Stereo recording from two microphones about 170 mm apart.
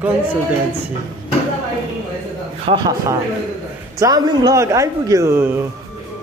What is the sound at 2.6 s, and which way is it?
A woman's voice, 30° right (ahead or behind).